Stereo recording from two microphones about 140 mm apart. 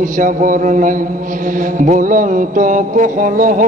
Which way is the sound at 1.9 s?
70° right (ahead or behind).